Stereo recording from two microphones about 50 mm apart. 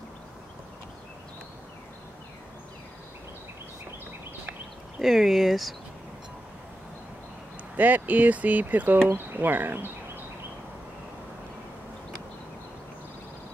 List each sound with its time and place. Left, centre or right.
5.0 s speech: centre
7.7 s speech: right